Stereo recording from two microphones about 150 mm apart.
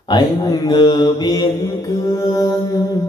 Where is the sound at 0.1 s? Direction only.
30° left (ahead or behind).